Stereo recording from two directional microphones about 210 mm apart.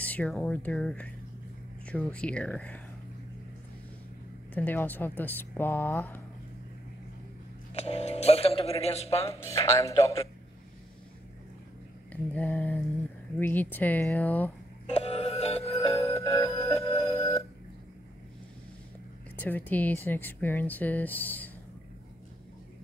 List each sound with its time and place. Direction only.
0.0 s a woman's voice: 5° left (ahead or behind)
4.6 s a woman's voice: 10° left (ahead or behind)
7.7 s speech: 30° left (ahead or behind)
9.3 s a woman's voice: 15° left (ahead or behind)
12.1 s mantra: 5° left (ahead or behind)
13.4 s a woman's voice: 10° left (ahead or behind)
14.9 s music: 30° left (ahead or behind)
16.0 s music: 15° left (ahead or behind)
16.8 s telephone: 15° left (ahead or behind)
19.3 s a woman's voice: 10° left (ahead or behind)